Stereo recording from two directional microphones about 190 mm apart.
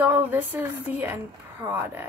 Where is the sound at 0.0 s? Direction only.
10° right (ahead or behind).